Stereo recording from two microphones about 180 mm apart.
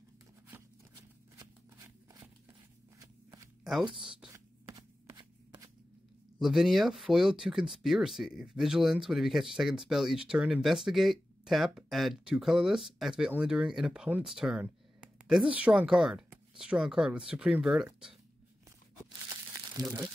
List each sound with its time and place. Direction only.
0.5 s a sound: 20° right (ahead or behind)
3.0 s walk: 20° right (ahead or behind)
3.7 s a sound: centre (ahead or behind)
4.3 s shuffling cards: 20° right (ahead or behind)
6.4 s speech: centre (ahead or behind)
19.8 s speech: 20° right (ahead or behind)